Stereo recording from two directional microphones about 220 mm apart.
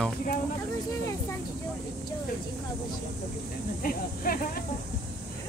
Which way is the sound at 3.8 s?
40° left (ahead or behind).